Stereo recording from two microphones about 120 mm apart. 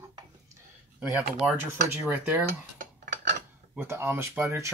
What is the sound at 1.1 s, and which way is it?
Speech, 10° right (ahead or behind).